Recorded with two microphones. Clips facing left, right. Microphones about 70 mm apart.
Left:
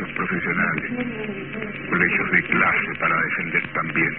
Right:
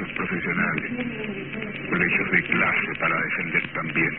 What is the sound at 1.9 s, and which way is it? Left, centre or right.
A man's voice, left.